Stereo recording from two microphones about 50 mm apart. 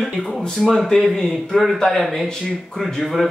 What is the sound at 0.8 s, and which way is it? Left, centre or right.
A man's voice, centre.